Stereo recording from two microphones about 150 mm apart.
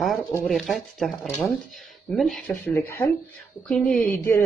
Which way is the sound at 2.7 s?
15° left (ahead or behind).